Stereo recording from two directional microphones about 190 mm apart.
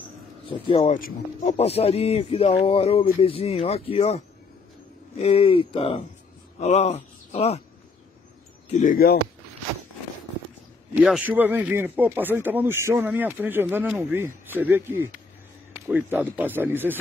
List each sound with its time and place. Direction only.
0.5 s speech: 30° left (ahead or behind)
0.9 s speech: 40° left (ahead or behind)
8.6 s speech: 35° left (ahead or behind)
8.9 s speech: 55° left (ahead or behind)
11.0 s speech: 5° right (ahead or behind)